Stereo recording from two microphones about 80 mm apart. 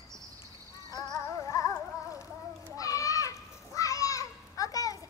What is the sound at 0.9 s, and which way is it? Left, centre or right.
Music, left.